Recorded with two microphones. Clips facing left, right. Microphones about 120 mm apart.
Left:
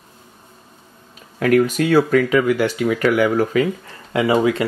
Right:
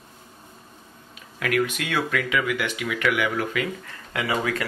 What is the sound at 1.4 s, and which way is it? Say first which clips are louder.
Speech: left 9 dB; 40° left (ahead or behind).